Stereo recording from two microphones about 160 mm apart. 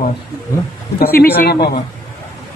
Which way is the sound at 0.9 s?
75° left (ahead or behind).